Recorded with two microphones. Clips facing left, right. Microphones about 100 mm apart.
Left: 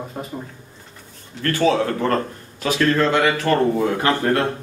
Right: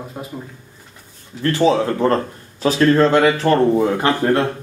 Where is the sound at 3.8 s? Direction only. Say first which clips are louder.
Right 3 dB; 20° right (ahead or behind).